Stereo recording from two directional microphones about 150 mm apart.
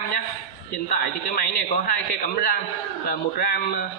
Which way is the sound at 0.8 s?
65° left (ahead or behind).